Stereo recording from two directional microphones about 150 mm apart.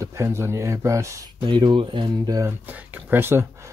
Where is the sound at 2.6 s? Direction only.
10° right (ahead or behind).